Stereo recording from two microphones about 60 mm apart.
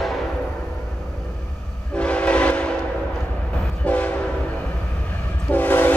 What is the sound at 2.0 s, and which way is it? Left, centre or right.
Train, left.